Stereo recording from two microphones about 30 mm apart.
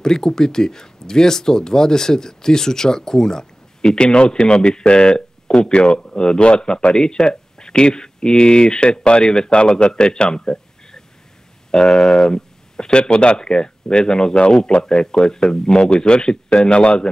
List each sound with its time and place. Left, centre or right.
0.0 s speech: centre
4.0 s a man's voice: left